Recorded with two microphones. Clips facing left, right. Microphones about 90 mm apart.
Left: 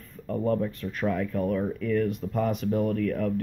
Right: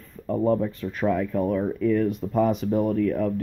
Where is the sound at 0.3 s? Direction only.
30° right (ahead or behind).